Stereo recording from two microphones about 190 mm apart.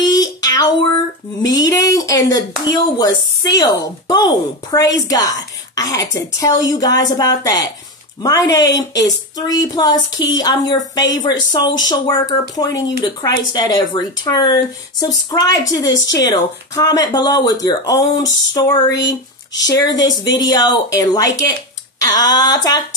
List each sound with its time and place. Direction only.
0.0 s a sound: 20° left (ahead or behind)
3.5 s speech: 20° left (ahead or behind)
15.9 s a woman's voice: 70° left (ahead or behind)
16.3 s speech: 20° left (ahead or behind)